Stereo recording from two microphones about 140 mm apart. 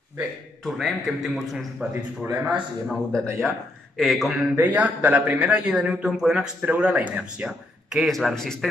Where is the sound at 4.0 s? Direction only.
Centre (ahead or behind).